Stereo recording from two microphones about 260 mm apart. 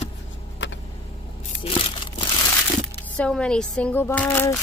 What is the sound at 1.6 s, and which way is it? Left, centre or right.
Crushing, left.